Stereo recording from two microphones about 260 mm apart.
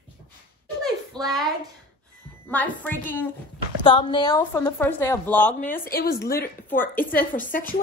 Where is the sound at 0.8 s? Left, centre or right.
Centre.